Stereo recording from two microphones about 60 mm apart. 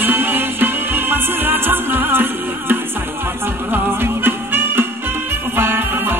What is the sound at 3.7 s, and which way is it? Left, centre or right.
Music, right.